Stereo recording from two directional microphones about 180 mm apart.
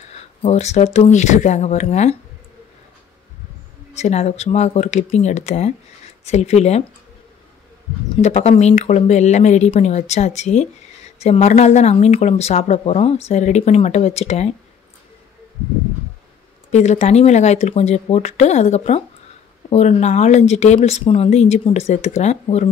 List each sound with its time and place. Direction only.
0.1 s speech: 35° left (ahead or behind)
3.9 s speech: 40° left (ahead or behind)
8.2 s speech: 35° left (ahead or behind)
16.7 s speech: 40° left (ahead or behind)